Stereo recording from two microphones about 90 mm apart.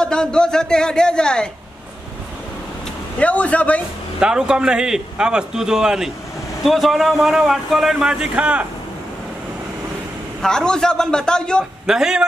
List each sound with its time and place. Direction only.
0.0 s speech: 10° left (ahead or behind)
3.2 s speech: 15° left (ahead or behind)
4.2 s a man's voice: 10° right (ahead or behind)
10.4 s speech: 10° left (ahead or behind)
11.8 s a man's voice: 5° right (ahead or behind)